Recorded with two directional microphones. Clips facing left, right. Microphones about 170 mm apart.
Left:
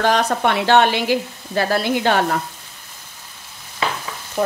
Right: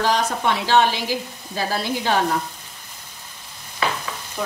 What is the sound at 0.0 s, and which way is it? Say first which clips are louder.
A woman's voice: left 3 dB; 60° left (ahead or behind).